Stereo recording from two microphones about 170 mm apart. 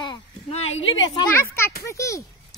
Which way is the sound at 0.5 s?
35° left (ahead or behind).